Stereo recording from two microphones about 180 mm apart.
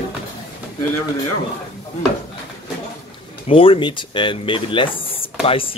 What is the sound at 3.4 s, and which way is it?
Speech, 30° left (ahead or behind).